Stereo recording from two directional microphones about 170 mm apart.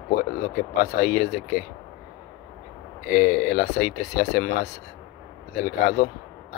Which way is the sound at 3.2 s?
70° left (ahead or behind).